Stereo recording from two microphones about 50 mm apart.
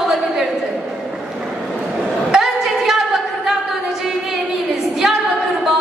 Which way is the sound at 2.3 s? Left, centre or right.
Centre.